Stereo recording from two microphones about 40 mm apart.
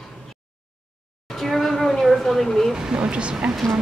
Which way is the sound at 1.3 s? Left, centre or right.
Centre.